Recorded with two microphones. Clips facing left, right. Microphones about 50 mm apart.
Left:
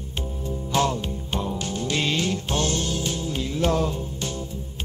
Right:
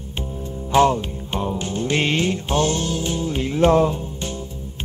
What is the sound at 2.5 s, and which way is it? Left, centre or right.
Music, centre.